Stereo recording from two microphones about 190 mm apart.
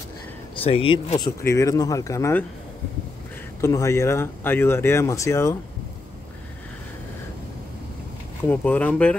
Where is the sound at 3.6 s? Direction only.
15° left (ahead or behind).